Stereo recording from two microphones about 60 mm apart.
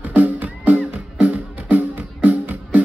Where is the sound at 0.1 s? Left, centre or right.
Right.